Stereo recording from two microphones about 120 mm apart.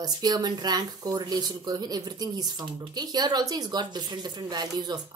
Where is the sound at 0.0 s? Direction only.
35° right (ahead or behind).